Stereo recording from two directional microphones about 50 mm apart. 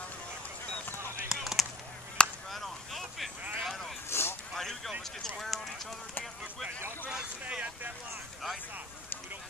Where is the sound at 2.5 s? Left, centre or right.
Centre.